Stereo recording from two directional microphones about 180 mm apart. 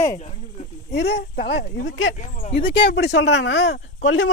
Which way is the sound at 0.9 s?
70° left (ahead or behind).